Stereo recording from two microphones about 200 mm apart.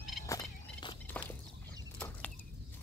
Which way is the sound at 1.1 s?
5° left (ahead or behind).